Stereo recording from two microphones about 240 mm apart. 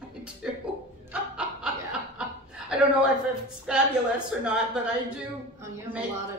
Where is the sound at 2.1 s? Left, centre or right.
Centre.